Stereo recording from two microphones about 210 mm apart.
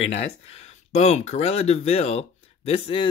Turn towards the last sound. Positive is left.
turn(degrees=30)  # may be behind; listen again after turning